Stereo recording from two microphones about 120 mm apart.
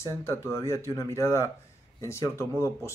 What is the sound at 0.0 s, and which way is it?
Speech, 20° left (ahead or behind).